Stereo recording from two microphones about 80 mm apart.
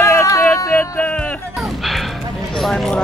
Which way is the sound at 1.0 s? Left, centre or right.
Centre.